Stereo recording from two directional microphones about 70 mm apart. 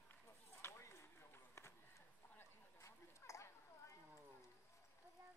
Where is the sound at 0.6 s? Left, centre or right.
Left.